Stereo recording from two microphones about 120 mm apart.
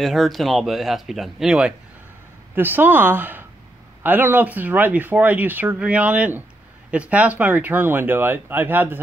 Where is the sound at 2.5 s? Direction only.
15° right (ahead or behind).